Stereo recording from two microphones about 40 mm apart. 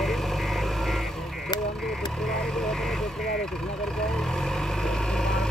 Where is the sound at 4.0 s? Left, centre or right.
Centre.